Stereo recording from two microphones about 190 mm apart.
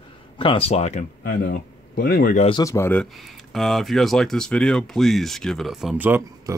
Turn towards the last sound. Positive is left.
turn(degrees=-10)  # may be behind; listen again after turning